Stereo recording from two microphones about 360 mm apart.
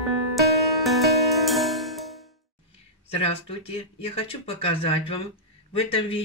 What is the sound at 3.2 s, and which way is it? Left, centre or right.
Speech, centre.